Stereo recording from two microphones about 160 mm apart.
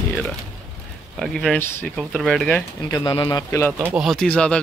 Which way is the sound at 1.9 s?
Centre (ahead or behind).